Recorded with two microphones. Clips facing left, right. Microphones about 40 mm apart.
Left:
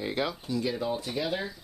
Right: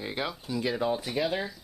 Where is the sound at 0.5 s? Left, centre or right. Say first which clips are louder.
Right 4 dB; centre.